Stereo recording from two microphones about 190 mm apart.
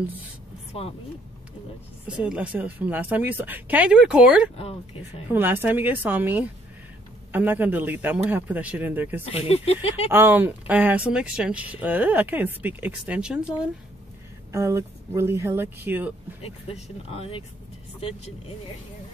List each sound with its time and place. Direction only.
2.0 s speech: 5° right (ahead or behind)
4.6 s speech: 30° left (ahead or behind)
5.3 s speech: 10° right (ahead or behind)
9.2 s speech: 30° left (ahead or behind)
10.1 s speech: 10° right (ahead or behind)
16.4 s speech: 35° left (ahead or behind)